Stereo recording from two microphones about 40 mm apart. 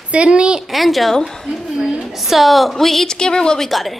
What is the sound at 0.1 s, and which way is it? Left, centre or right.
Speech, right.